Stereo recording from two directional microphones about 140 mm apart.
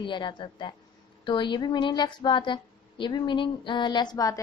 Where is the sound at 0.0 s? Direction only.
35° left (ahead or behind).